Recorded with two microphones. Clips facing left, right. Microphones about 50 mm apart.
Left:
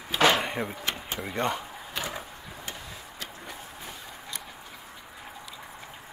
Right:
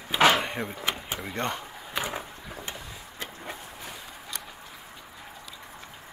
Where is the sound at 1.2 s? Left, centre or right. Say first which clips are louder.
Left 2 dB; centre.